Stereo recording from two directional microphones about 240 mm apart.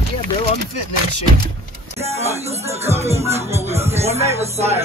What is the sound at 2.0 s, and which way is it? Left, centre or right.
Music, right.